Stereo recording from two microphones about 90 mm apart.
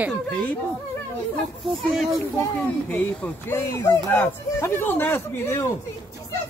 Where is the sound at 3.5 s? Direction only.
30° left (ahead or behind).